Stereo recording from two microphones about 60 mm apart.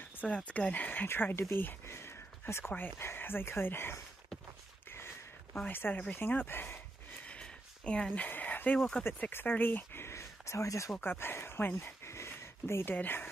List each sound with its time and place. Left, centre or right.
0.4 s speech: left
1.0 s speech: left
2.0 s a sound: left
3.0 s speech: left
5.5 s speech: left
7.2 s a sound: centre
8.7 s speech: centre
9.3 s speech: left
10.0 s a sound: left
11.0 s speech: left